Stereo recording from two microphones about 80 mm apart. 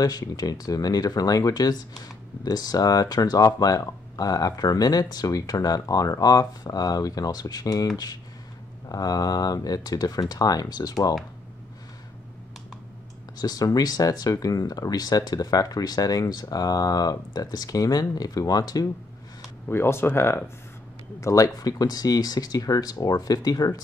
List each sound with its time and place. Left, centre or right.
0.0 s speech: left
13.4 s speech: left
19.7 s speech: left
21.2 s speech: left